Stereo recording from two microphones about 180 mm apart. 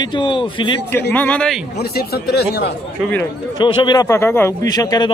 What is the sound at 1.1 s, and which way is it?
Speech, 10° left (ahead or behind).